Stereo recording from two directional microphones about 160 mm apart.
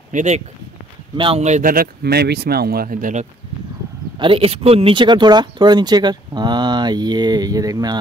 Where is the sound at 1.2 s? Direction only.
35° right (ahead or behind).